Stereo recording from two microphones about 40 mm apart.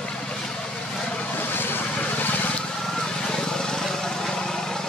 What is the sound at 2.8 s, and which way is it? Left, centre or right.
Vehicle, centre.